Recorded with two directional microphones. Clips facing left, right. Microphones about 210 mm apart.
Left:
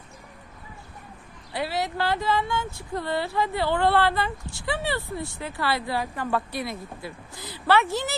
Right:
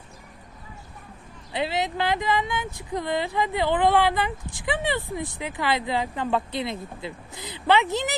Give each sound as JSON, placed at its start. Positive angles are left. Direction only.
{"t": 1.5, "sound": "speech", "side_deg": -20}